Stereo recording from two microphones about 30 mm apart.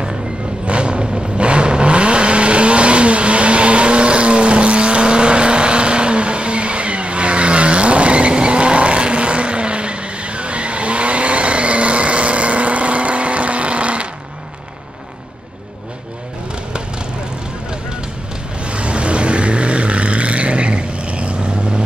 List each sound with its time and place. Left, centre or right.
0.7 s vehicle: right
18.6 s vehicle: right